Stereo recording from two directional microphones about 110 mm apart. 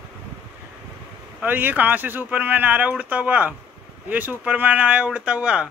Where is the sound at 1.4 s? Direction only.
15° right (ahead or behind).